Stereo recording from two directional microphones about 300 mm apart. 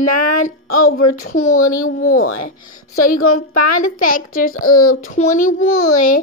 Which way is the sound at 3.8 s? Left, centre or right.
Left.